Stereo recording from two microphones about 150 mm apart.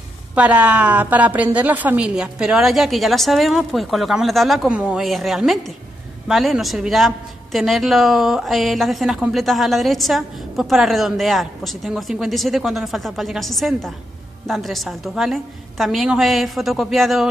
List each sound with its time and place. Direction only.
0.3 s a woman's voice: 10° right (ahead or behind)